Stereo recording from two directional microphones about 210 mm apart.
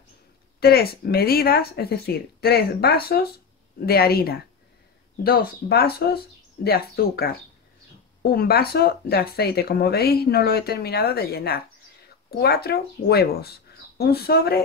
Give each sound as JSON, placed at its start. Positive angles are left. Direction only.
{"t": 0.6, "sound": "speech", "side_deg": 45}